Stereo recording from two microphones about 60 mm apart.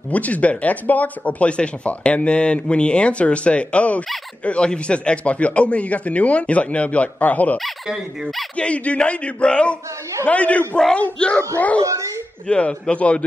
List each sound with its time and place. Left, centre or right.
0.1 s speech: left
7.5 s speech: centre
8.5 s speech: left
11.8 s speech: right
12.4 s speech: centre